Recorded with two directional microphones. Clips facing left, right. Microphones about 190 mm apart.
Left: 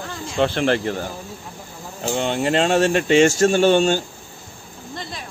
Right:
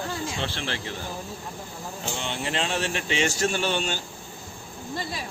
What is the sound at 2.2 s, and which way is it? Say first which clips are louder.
Speech: left 11 dB; 45° left (ahead or behind).